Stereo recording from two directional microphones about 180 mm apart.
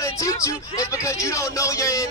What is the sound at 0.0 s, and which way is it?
A man's voice, 15° left (ahead or behind).